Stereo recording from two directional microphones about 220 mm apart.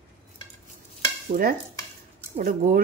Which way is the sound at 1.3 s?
40° right (ahead or behind).